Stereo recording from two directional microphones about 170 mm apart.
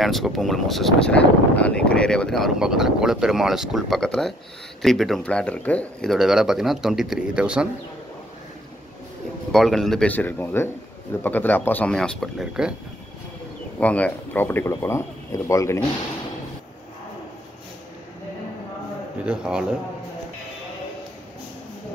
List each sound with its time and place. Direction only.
0.0 s speech: centre (ahead or behind)
9.5 s speech: centre (ahead or behind)
13.7 s speech: 10° left (ahead or behind)
19.2 s speech: 5° right (ahead or behind)